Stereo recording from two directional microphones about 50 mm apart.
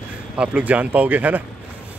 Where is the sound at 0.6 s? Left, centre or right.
Right.